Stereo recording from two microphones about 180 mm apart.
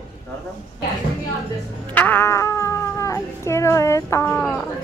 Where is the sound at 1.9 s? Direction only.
10° left (ahead or behind).